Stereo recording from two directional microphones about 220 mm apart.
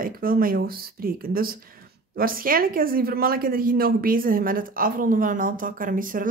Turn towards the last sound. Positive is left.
turn(degrees=-40)  # may be behind; listen again after turning